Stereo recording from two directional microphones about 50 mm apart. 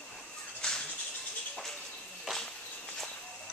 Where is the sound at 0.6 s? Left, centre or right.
Centre.